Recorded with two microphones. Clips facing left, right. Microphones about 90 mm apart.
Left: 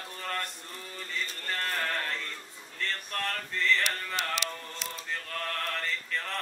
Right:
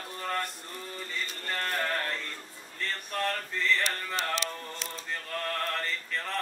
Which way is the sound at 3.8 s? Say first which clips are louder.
Right 1 dB; 35° right (ahead or behind).